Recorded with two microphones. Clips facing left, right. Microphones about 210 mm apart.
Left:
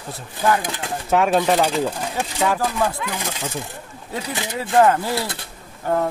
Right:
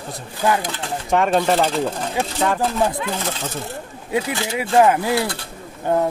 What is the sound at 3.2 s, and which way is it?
Speech, 15° left (ahead or behind).